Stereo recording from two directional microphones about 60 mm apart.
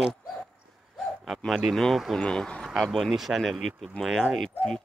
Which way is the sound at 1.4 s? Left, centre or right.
Centre.